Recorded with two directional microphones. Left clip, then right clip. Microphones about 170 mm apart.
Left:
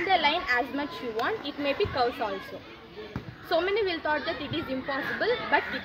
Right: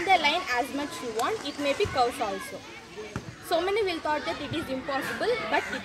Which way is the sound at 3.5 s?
10° left (ahead or behind).